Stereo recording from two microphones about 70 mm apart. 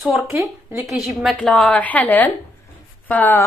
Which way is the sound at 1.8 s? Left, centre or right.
Left.